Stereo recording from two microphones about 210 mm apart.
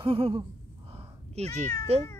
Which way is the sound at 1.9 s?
30° right (ahead or behind).